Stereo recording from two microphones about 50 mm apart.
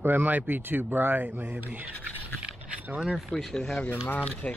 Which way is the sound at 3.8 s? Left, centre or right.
Left.